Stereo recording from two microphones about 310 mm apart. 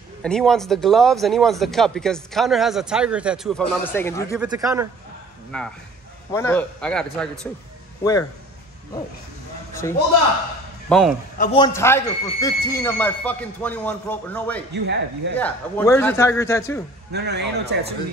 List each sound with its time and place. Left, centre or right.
0.2 s speech: centre
4.4 s speech: centre
6.3 s speech: centre
9.8 s speech: centre
11.3 s speech: centre
14.7 s speech: right
15.3 s speech: centre
17.1 s speech: right